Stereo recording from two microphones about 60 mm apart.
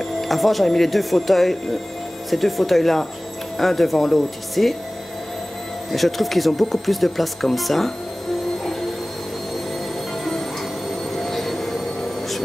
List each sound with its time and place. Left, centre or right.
0.2 s speech: centre
5.9 s speech: centre
11.1 s music: centre